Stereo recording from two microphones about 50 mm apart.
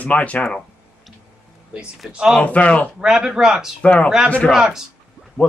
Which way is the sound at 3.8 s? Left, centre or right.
Left.